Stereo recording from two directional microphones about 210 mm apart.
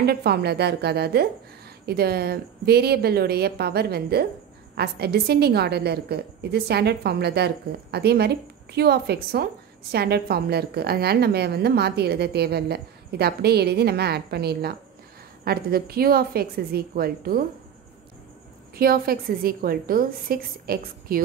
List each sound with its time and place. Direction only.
0.0 s a woman's voice: 50° right (ahead or behind)
18.8 s a woman's voice: 45° right (ahead or behind)